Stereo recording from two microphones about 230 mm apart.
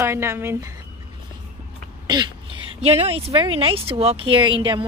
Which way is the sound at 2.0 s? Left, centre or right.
Centre.